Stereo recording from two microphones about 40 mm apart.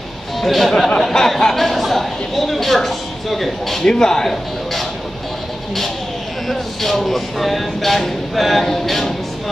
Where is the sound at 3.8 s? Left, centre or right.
Centre.